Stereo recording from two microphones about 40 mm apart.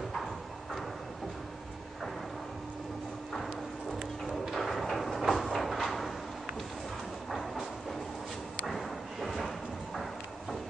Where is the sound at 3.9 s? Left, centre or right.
Centre.